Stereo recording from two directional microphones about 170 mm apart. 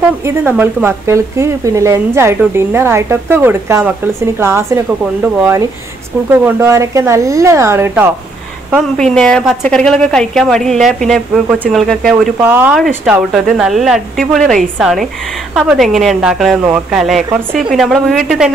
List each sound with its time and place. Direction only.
0.2 s a woman's voice: 15° right (ahead or behind)
8.7 s speech: 5° left (ahead or behind)
11.4 s a woman's voice: 10° right (ahead or behind)
11.7 s speech: centre (ahead or behind)
12.4 s a woman's voice: 10° right (ahead or behind)
12.7 s speech: centre (ahead or behind)